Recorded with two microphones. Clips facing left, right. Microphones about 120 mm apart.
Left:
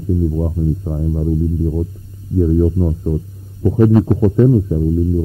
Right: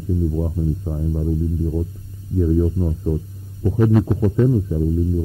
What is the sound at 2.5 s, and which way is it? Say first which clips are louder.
Speech: left 4 dB; 25° left (ahead or behind).